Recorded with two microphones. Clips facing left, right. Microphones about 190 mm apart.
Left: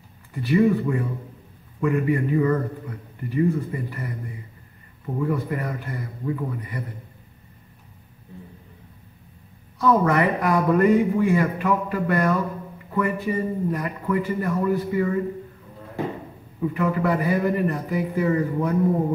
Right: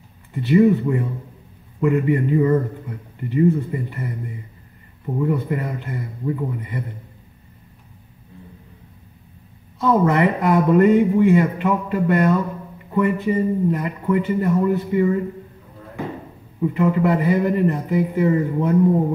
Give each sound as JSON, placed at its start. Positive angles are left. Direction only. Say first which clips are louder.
{"t": 0.3, "sound": "speech", "louder": "right 4 dB", "side_deg": -20}
{"t": 9.8, "sound": "speech", "louder": "right 2 dB", "side_deg": -20}
{"t": 16.7, "sound": "speech", "louder": "right 4 dB", "side_deg": -20}